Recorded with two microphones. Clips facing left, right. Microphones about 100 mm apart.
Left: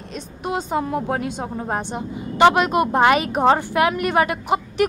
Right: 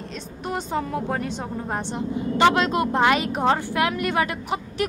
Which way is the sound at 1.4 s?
30° left (ahead or behind).